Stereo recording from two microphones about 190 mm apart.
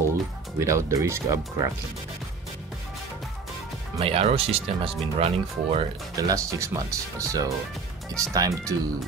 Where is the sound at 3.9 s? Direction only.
30° right (ahead or behind).